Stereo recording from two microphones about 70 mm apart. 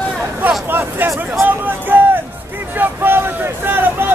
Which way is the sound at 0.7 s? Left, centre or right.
Right.